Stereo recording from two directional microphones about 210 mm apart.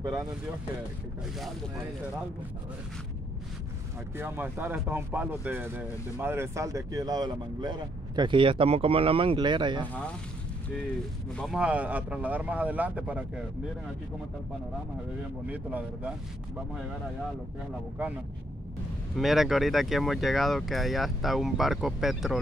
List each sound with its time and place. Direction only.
4.2 s speech: 10° right (ahead or behind)
11.3 s speech: centre (ahead or behind)
15.4 s speech: 5° right (ahead or behind)
19.1 s speech: centre (ahead or behind)